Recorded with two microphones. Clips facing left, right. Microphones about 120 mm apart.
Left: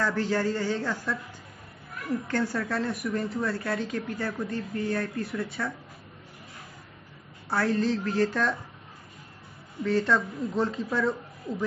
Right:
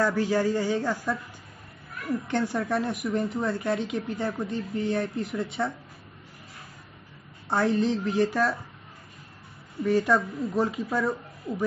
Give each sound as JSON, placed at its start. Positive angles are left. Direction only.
{"t": 0.0, "sound": "speech", "side_deg": -10}
{"t": 2.2, "sound": "speech", "side_deg": -20}
{"t": 7.4, "sound": "speech", "side_deg": -20}
{"t": 9.8, "sound": "speech", "side_deg": -15}